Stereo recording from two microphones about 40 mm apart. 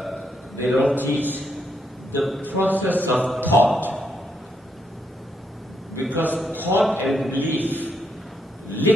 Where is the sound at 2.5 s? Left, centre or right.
Right.